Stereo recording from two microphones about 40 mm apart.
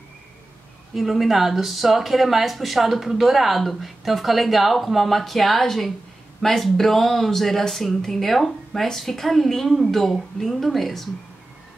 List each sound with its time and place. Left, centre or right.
0.9 s speech: centre